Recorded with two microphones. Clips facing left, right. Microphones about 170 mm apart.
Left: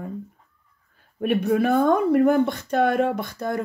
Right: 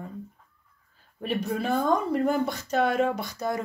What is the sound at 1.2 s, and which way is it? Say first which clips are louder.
Speech: left 8 dB; 60° left (ahead or behind).